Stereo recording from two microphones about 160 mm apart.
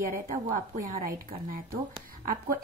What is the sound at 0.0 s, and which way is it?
A woman's voice, 60° right (ahead or behind).